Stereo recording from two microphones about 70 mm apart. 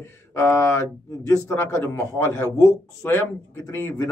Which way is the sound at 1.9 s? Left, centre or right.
Left.